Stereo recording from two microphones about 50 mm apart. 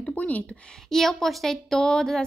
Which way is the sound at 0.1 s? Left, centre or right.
Left.